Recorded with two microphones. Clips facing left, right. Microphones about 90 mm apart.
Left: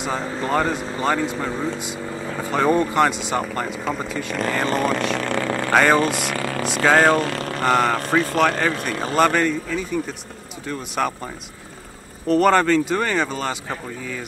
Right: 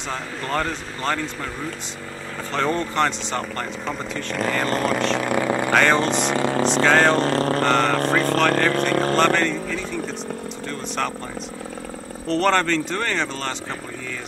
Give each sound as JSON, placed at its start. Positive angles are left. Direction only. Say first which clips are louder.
{"t": 0.0, "sound": "speech", "louder": "left 5 dB", "side_deg": 10}
{"t": 5.7, "sound": "speech", "louder": "left 3 dB", "side_deg": 5}
{"t": 6.3, "sound": "vehicle", "louder": "right 4 dB", "side_deg": -25}
{"t": 6.6, "sound": "speech", "louder": "left 2 dB", "side_deg": 10}
{"t": 7.2, "sound": "speech", "louder": "right 4 dB", "side_deg": -35}
{"t": 7.6, "sound": "speech", "louder": "even", "side_deg": 5}
{"t": 12.3, "sound": "speech", "louder": "left 4 dB", "side_deg": 5}